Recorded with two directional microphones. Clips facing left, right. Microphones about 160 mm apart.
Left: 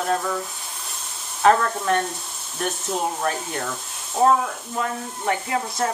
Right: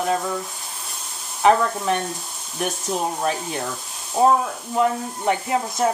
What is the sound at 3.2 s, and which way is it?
Speech, 15° right (ahead or behind).